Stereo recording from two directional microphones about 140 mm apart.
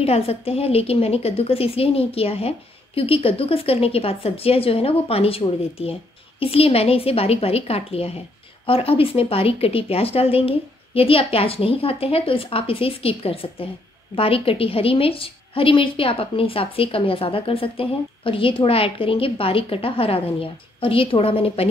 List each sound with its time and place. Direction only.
0.0 s a woman's voice: 45° left (ahead or behind)